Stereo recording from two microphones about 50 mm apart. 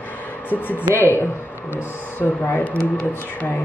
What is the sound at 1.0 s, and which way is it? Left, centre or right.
Speech, left.